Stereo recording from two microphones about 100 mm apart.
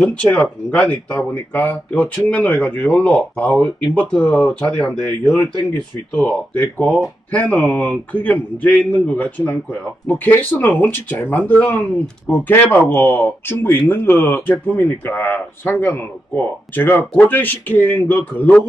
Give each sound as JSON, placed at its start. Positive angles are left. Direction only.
{"t": 0.0, "sound": "a man's voice", "side_deg": 15}